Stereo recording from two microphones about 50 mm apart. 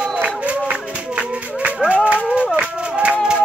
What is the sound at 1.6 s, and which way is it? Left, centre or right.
Music, right.